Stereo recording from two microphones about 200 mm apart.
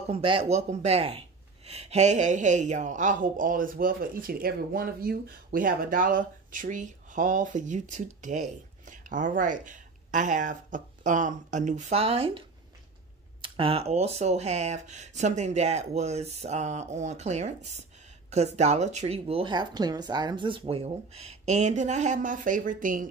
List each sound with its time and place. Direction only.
0.1 s speech: 25° right (ahead or behind); by 23.0 s 40° right (ahead or behind)